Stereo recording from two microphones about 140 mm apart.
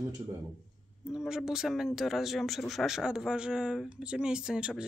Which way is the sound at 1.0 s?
5° right (ahead or behind).